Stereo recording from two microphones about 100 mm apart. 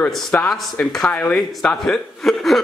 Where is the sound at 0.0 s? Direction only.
15° left (ahead or behind).